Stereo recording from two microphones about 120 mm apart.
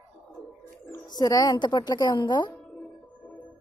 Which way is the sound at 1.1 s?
30° left (ahead or behind).